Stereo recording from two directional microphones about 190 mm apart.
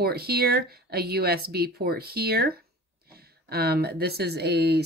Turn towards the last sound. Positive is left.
turn(degrees=-60)  # may be behind; listen again after turning